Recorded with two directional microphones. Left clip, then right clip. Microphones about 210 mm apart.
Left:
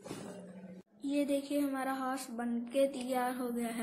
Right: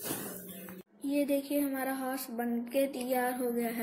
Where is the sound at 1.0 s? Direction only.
5° left (ahead or behind).